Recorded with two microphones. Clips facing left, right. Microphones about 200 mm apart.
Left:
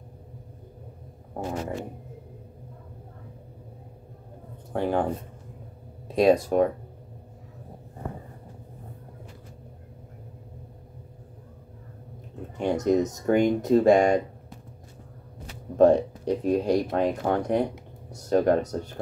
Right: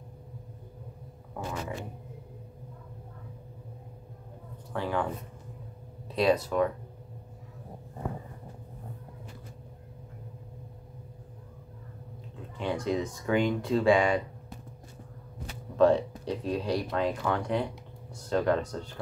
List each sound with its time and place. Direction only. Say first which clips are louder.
1.3 s a sound: left 5 dB; 40° left (ahead or behind)
4.7 s speech: left 6 dB; 45° left (ahead or behind)
12.5 s speech: left 7 dB; 45° left (ahead or behind)
15.7 s speech: left 4 dB; 50° left (ahead or behind)